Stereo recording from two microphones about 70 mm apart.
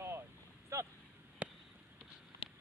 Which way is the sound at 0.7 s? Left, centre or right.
Right.